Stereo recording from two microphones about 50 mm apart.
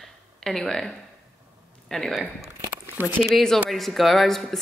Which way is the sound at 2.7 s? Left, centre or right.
Right.